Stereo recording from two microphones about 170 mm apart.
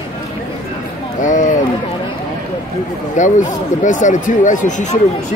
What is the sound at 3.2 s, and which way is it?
Speech, 45° left (ahead or behind).